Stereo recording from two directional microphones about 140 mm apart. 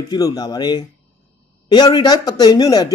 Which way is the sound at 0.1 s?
30° left (ahead or behind).